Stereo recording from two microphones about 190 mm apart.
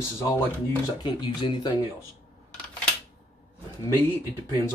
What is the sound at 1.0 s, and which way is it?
Speech, 25° left (ahead or behind).